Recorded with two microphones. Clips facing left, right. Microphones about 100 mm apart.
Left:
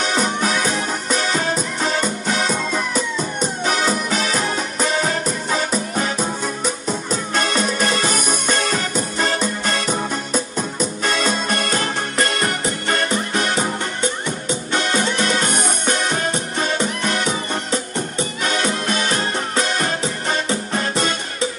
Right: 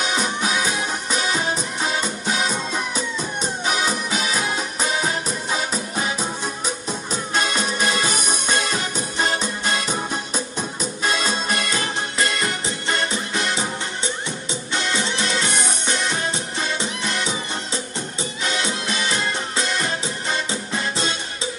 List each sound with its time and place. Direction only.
0.0 s music: 45° left (ahead or behind)